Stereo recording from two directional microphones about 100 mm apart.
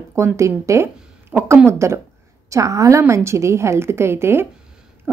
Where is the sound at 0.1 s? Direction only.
30° right (ahead or behind).